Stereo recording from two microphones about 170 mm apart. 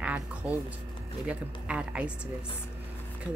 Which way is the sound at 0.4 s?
5° right (ahead or behind).